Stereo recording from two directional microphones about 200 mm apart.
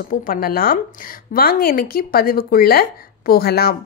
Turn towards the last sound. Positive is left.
turn(degrees=50)  # may be behind; listen again after turning